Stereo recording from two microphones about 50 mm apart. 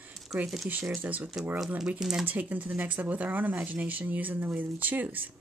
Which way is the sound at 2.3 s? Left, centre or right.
Right.